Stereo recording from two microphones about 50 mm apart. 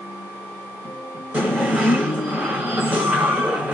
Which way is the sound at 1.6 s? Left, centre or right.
Right.